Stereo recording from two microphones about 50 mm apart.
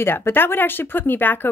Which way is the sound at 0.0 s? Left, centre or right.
Left.